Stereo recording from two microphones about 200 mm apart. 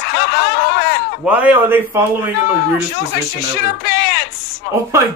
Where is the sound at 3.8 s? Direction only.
55° left (ahead or behind).